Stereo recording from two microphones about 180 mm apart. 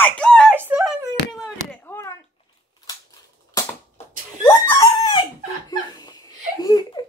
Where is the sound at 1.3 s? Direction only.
15° left (ahead or behind).